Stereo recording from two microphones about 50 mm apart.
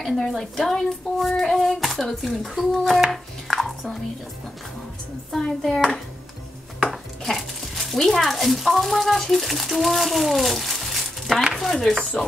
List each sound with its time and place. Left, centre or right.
0.0 s speech: centre
3.1 s a sound: centre
5.3 s a child's voice: centre
6.9 s dishes: centre
11.5 s speech: centre